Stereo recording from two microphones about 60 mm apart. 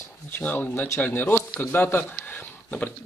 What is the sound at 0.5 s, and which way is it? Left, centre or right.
Speech, left.